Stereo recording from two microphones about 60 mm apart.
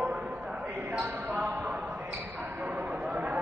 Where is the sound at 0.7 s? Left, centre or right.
Right.